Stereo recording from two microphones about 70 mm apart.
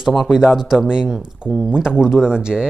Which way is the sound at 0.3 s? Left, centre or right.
Centre.